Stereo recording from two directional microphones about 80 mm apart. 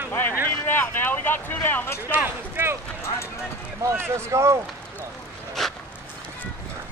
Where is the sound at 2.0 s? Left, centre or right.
Right.